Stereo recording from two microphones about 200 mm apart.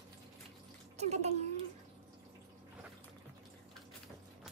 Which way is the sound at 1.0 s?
35° right (ahead or behind).